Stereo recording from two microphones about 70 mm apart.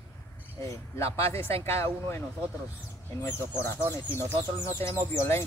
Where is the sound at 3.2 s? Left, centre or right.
Left.